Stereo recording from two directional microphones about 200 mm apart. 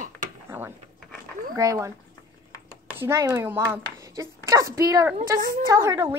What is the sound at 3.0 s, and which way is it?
Speech, 15° right (ahead or behind).